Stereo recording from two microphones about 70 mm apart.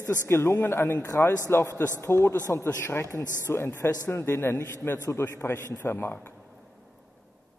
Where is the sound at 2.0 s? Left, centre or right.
Left.